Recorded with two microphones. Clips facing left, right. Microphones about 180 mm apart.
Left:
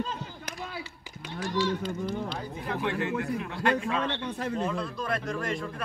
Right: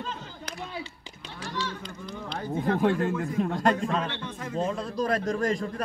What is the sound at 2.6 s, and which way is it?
A man's voice, 40° right (ahead or behind).